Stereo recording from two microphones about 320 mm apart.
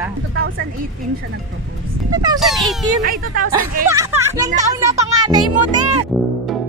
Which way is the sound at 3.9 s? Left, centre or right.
Centre.